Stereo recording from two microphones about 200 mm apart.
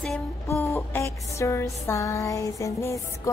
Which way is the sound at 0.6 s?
10° left (ahead or behind).